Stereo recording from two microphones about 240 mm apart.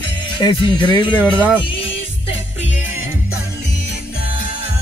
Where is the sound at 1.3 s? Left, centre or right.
Centre.